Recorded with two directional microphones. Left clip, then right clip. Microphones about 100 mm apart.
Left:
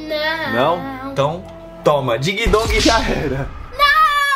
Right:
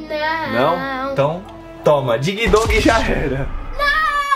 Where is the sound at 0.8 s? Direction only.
55° right (ahead or behind).